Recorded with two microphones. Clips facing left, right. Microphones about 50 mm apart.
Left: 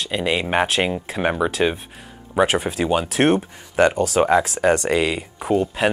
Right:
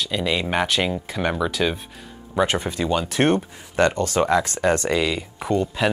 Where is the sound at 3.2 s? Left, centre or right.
Centre.